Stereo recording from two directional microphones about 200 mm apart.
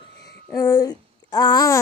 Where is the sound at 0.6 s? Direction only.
15° left (ahead or behind).